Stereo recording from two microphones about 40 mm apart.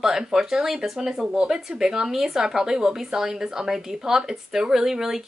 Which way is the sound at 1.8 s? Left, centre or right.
Centre.